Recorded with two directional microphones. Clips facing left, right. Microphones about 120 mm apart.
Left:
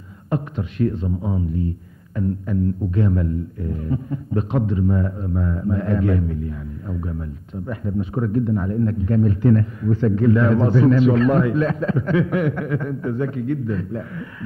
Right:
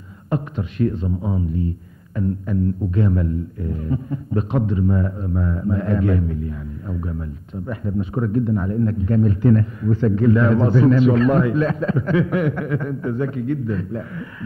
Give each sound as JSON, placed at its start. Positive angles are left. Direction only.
{"t": 0.3, "sound": "a man's voice", "side_deg": -15}